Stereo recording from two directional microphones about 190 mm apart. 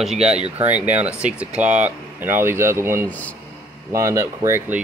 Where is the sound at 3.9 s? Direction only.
15° right (ahead or behind).